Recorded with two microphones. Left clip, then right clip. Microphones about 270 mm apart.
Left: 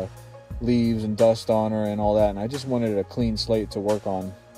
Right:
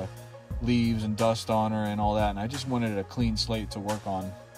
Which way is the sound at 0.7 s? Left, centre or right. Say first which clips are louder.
Left 7 dB; centre.